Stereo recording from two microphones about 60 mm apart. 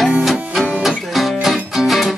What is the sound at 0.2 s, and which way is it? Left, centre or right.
Music, centre.